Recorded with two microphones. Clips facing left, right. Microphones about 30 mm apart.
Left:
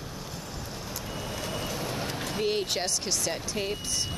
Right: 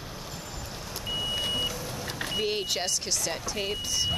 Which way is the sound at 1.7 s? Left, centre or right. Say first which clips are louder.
Left 3 dB; left.